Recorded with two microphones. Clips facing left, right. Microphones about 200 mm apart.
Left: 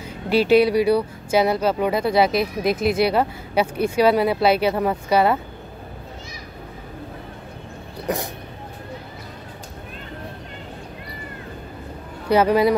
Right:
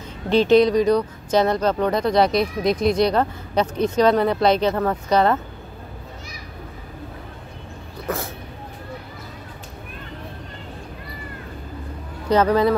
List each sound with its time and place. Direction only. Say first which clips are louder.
0.3 s speech: right 1 dB; 10° left (ahead or behind)
8.1 s speech: left 2 dB; 15° left (ahead or behind)
12.3 s speech: left 1 dB; 10° left (ahead or behind)